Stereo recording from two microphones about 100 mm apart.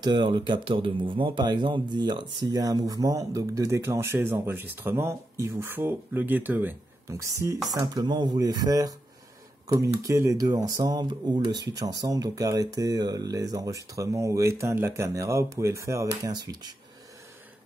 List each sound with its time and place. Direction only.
0.0 s speech: 50° right (ahead or behind); by 6.7 s 20° right (ahead or behind)
7.1 s speech: 30° right (ahead or behind)